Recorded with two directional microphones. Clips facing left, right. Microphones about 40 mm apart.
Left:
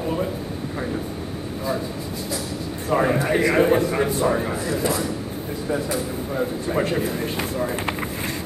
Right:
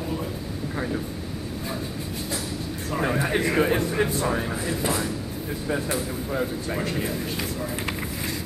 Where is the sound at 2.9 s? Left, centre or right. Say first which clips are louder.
Left 5 dB; left.